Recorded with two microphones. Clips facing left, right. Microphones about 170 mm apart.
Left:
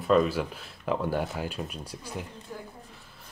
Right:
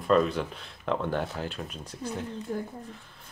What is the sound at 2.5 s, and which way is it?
Speech, 55° right (ahead or behind).